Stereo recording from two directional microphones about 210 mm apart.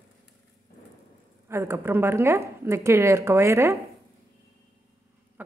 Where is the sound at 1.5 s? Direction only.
10° right (ahead or behind).